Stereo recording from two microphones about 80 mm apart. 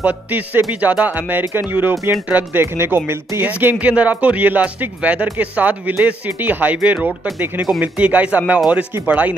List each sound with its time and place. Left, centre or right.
0.0 s speech: centre
3.7 s speech: centre